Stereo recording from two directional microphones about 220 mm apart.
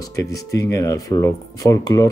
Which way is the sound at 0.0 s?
15° left (ahead or behind).